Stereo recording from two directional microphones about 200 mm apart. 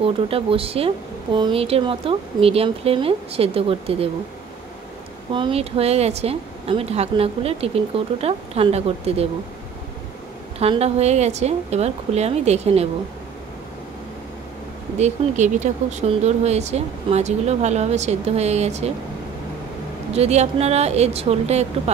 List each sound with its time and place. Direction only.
0.0 s speech: 30° right (ahead or behind)
5.3 s speech: 25° right (ahead or behind)
10.6 s speech: 30° right (ahead or behind)
15.0 s speech: 35° right (ahead or behind)
20.2 s speech: 30° right (ahead or behind)